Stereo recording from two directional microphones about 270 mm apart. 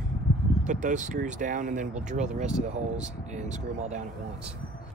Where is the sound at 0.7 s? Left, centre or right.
Right.